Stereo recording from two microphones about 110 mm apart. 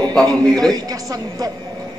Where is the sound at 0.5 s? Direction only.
35° right (ahead or behind).